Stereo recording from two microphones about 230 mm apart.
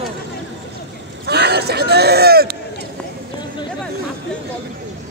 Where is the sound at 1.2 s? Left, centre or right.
Right.